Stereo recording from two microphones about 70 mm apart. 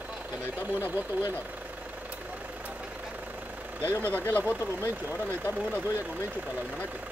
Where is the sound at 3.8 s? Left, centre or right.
Right; by 6.8 s centre.